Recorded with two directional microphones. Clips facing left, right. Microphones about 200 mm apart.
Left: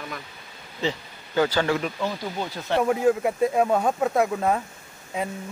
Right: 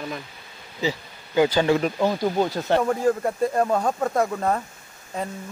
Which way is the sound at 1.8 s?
45° right (ahead or behind).